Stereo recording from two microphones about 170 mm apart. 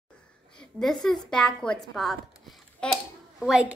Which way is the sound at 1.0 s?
5° left (ahead or behind).